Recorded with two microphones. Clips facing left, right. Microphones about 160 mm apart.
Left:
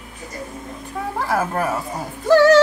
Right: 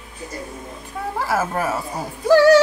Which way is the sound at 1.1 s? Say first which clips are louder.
Even; 5° right (ahead or behind).